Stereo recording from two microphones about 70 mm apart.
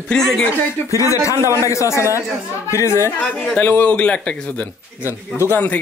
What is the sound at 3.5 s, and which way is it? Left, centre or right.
A man's voice, left.